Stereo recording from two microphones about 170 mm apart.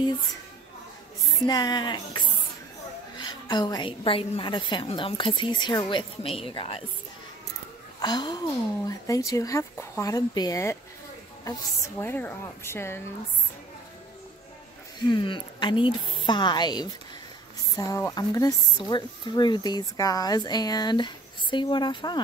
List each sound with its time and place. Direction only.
1.4 s a woman's voice: 25° left (ahead or behind)
8.0 s speech: 25° left (ahead or behind)
12.0 s speech: 10° left (ahead or behind)
15.0 s speech: 25° left (ahead or behind)